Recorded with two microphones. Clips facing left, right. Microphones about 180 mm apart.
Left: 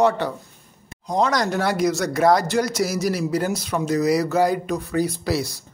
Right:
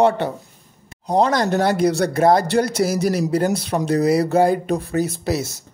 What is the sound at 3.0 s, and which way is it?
Speech, 50° right (ahead or behind).